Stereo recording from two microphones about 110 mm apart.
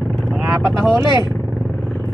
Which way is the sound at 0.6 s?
5° left (ahead or behind).